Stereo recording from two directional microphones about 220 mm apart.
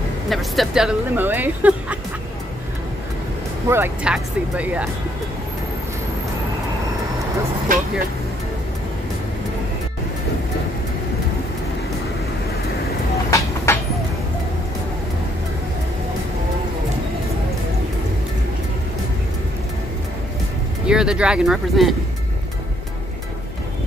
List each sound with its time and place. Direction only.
0.3 s speech: centre (ahead or behind)
3.6 s speech: 10° right (ahead or behind)
7.7 s speech: 40° right (ahead or behind)
13.7 s vehicle: 10° left (ahead or behind)
20.8 s speech: 5° right (ahead or behind)